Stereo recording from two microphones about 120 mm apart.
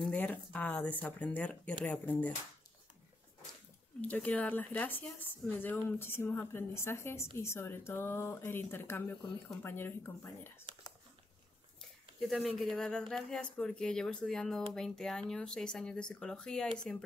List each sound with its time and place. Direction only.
0.1 s speech: 10° left (ahead or behind)
4.0 s speech: 10° left (ahead or behind)
12.4 s speech: centre (ahead or behind)